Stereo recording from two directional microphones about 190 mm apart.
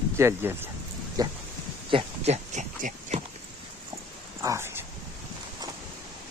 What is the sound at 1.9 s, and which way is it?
Speech, 35° right (ahead or behind).